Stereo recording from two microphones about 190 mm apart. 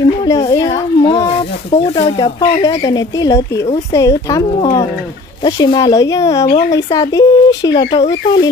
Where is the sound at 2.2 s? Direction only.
20° left (ahead or behind).